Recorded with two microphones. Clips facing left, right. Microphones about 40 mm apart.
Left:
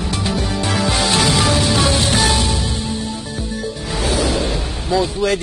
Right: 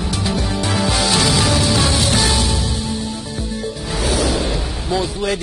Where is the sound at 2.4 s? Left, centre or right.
Centre.